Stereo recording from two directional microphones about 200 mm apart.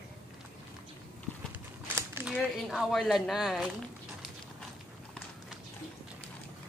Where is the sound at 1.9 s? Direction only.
10° right (ahead or behind).